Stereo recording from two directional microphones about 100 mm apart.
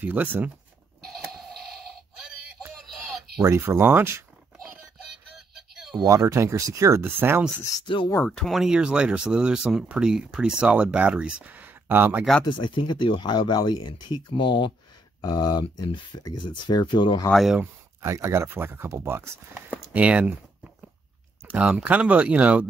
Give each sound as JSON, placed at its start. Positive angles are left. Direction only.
{"t": 0.0, "sound": "speech", "side_deg": -15}
{"t": 1.0, "sound": "a sound", "side_deg": 0}
{"t": 3.3, "sound": "speech", "side_deg": -25}
{"t": 5.9, "sound": "speech", "side_deg": -30}
{"t": 7.8, "sound": "speech", "side_deg": 55}
{"t": 8.3, "sound": "speech", "side_deg": 0}
{"t": 12.5, "sound": "speech", "side_deg": 50}
{"t": 17.3, "sound": "speech", "side_deg": 0}
{"t": 17.6, "sound": "speech", "side_deg": -30}
{"t": 19.9, "sound": "speech", "side_deg": -10}
{"t": 21.5, "sound": "speech", "side_deg": -10}